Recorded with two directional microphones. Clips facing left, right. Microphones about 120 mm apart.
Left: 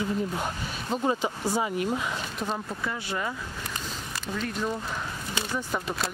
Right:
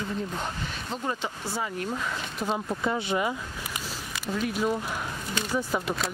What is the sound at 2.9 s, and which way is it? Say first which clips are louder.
Speech: right 5 dB; 15° right (ahead or behind).